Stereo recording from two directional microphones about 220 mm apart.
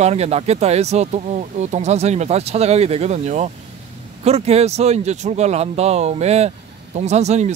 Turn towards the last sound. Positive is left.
turn(degrees=-30)  # may be behind; listen again after turning